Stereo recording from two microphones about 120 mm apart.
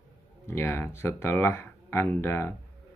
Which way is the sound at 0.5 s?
20° left (ahead or behind).